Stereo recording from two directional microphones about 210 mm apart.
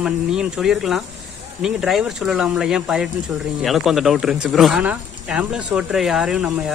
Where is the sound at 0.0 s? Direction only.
5° right (ahead or behind).